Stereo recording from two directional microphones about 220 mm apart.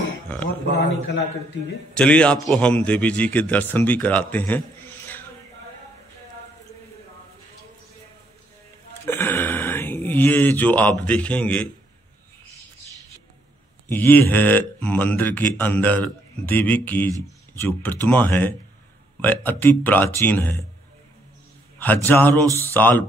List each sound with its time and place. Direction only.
0.7 s a man's voice: 50° left (ahead or behind)
2.0 s a man's voice: 5° left (ahead or behind)
9.0 s speech: 10° left (ahead or behind)
13.8 s a man's voice: 10° left (ahead or behind)
21.7 s a man's voice: 10° left (ahead or behind)